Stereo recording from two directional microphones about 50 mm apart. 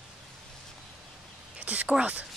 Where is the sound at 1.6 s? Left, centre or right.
Right.